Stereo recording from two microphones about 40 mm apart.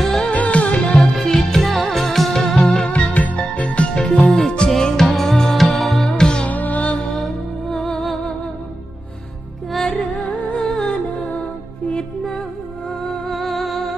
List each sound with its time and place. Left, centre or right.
0.0 s music: centre
0.3 s music: left
1.1 s music: centre
2.9 s music: left
4.4 s music: centre
6.0 s music: centre
6.5 s music: left
7.7 s music: centre
9.7 s music: centre
9.9 s music: left
10.7 s music: left
13.3 s music: centre